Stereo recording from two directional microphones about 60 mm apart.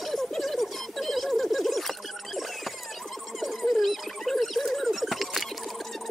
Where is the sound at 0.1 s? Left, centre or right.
Centre.